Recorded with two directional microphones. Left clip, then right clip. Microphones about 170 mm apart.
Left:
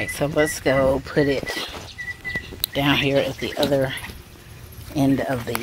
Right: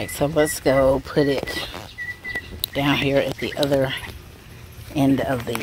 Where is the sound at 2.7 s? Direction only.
5° right (ahead or behind).